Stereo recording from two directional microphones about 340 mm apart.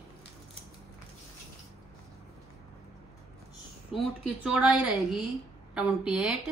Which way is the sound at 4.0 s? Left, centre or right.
Centre.